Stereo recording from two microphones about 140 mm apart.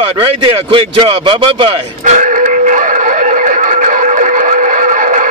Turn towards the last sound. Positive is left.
turn(degrees=-65)  # may be behind; listen again after turning